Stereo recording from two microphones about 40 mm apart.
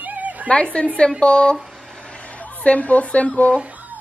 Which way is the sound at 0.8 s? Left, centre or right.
Left.